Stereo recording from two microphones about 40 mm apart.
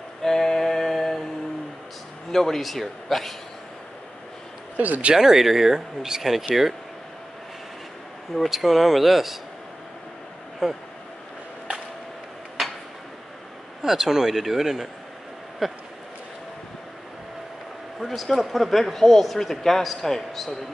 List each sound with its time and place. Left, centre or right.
0.2 s a sound: centre
2.3 s a man's voice: centre
4.7 s speech: right
5.1 s speech: centre
6.5 s a man's voice: centre
8.5 s a man's voice: centre
10.6 s speech: centre
13.8 s speech: centre
18.0 s a man's voice: centre